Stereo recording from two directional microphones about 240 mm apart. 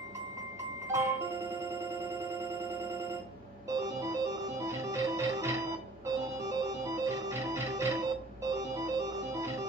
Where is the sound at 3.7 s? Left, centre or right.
Centre.